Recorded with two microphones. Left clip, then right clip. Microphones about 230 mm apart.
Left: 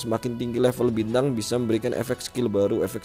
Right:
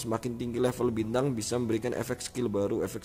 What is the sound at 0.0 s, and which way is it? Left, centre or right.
Speech, centre.